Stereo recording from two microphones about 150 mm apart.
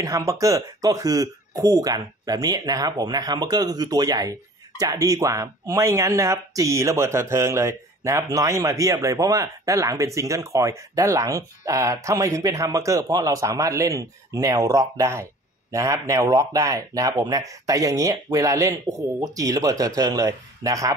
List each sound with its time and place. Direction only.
0.0 s speech: 20° right (ahead or behind)